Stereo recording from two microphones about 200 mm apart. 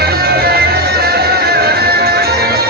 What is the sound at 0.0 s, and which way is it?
Music, 50° right (ahead or behind).